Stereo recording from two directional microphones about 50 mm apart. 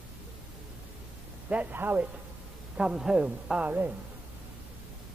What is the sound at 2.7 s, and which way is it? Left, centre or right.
Speech, centre.